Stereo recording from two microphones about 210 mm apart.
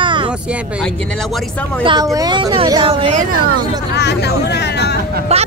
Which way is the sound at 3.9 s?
55° left (ahead or behind).